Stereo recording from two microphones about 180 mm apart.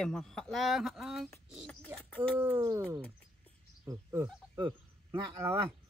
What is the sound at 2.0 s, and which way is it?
Speech, 5° left (ahead or behind).